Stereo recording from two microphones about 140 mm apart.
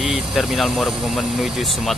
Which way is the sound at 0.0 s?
5° right (ahead or behind).